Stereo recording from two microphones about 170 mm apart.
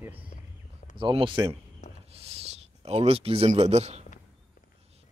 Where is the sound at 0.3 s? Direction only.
45° left (ahead or behind).